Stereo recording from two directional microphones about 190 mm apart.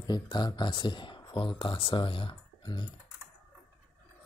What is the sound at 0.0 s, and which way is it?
Speech, 20° left (ahead or behind).